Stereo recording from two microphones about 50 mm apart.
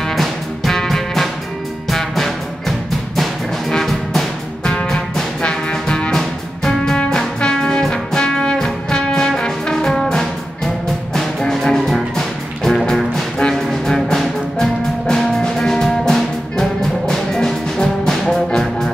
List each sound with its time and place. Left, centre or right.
0.1 s music: centre
4.6 s music: centre
9.4 s brass instrument: centre
11.1 s music: centre